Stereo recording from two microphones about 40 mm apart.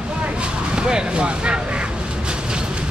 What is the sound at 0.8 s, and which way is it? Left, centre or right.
Speech, right.